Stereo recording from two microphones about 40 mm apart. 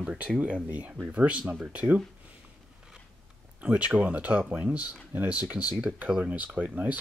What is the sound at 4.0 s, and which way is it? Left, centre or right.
Speech, right.